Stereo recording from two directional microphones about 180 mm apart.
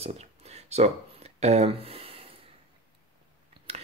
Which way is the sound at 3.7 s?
35° right (ahead or behind).